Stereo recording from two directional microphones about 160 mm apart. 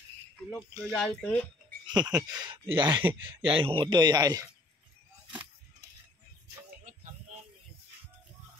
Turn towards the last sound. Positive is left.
turn(degrees=-55)  # may be behind; listen again after turning